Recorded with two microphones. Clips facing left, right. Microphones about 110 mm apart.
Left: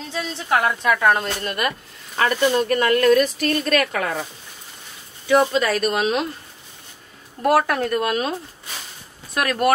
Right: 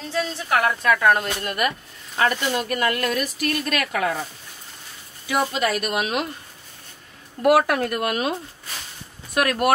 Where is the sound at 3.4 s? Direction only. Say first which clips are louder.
Left 4 dB; 35° left (ahead or behind).